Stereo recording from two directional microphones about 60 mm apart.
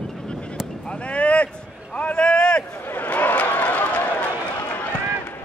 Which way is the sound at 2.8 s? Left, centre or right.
Left.